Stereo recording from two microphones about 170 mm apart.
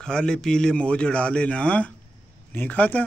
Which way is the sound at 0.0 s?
5° left (ahead or behind).